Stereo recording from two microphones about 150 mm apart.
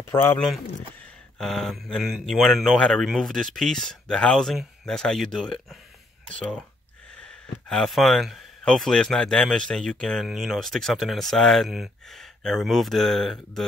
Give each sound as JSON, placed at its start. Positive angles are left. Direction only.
{"t": 0.1, "sound": "speech", "side_deg": 15}
{"t": 1.4, "sound": "speech", "side_deg": 0}
{"t": 7.2, "sound": "speech", "side_deg": 5}